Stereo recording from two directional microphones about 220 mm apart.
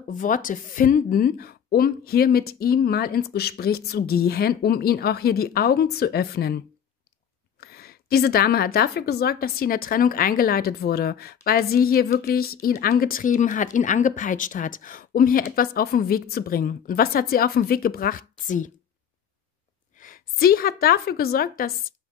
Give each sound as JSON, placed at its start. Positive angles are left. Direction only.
{"t": 0.0, "sound": "speech", "side_deg": 35}
{"t": 7.6, "sound": "speech", "side_deg": 45}
{"t": 20.0, "sound": "a woman's voice", "side_deg": 40}